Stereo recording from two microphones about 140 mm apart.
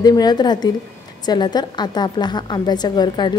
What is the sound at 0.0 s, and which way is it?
A woman's voice, 30° left (ahead or behind).